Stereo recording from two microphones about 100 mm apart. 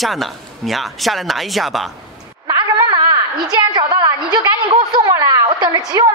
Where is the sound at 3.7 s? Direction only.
45° right (ahead or behind).